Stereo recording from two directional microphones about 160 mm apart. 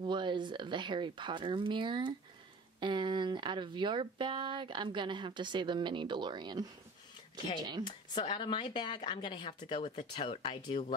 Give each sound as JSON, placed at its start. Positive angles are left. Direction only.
{"t": 0.0, "sound": "speech", "side_deg": -30}
{"t": 7.8, "sound": "speech", "side_deg": 30}